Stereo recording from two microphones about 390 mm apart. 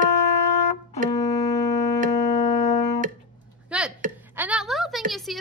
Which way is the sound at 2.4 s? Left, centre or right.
Centre.